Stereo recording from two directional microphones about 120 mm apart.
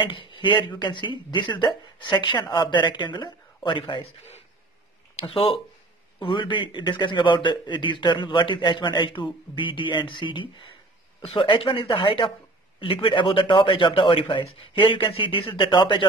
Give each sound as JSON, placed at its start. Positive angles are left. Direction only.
{"t": 0.0, "sound": "a man's voice", "side_deg": 45}
{"t": 5.2, "sound": "a man's voice", "side_deg": 45}